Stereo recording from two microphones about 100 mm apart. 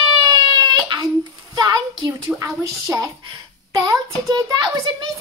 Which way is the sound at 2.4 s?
35° right (ahead or behind).